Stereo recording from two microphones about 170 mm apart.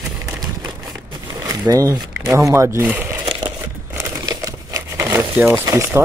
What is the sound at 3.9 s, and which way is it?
Crumpling, 20° right (ahead or behind).